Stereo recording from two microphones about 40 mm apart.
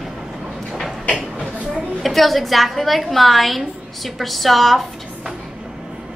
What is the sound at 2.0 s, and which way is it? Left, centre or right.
A woman's voice, centre.